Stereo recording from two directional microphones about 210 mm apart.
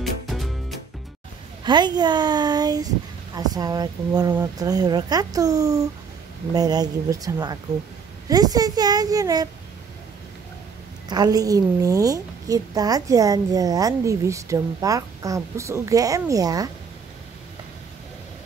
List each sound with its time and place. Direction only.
0.0 s music: centre (ahead or behind)
1.6 s a woman's voice: 20° right (ahead or behind)
11.1 s a woman's voice: 20° right (ahead or behind)